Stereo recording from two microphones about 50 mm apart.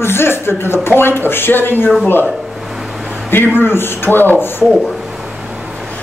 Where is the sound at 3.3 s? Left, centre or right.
Left.